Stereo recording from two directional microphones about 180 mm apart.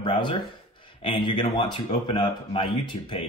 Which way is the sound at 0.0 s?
30° left (ahead or behind).